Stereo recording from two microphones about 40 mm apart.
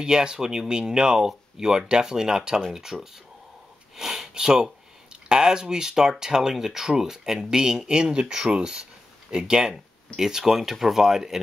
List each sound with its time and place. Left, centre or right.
0.0 s speech: right
3.9 s a sound: centre
4.3 s speech: centre